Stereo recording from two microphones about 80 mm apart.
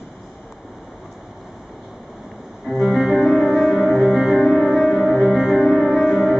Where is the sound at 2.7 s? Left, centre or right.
Centre.